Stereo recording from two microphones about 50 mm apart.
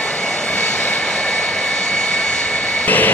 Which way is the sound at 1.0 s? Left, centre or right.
Centre.